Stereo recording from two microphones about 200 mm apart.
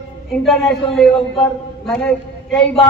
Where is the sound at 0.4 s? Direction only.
Centre (ahead or behind).